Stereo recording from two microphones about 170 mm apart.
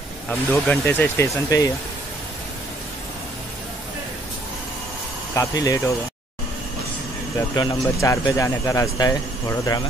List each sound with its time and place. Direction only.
0.3 s speech: 5° left (ahead or behind)
5.3 s speech: 20° left (ahead or behind)
7.3 s speech: 20° left (ahead or behind)